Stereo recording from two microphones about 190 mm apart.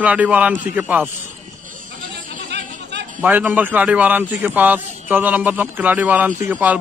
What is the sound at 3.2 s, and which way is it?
A man's voice, 10° right (ahead or behind).